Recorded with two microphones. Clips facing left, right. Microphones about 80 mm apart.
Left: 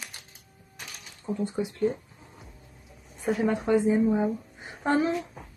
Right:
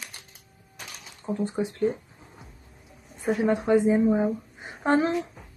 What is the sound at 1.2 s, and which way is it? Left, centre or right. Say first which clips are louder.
Speech: right 2 dB; right.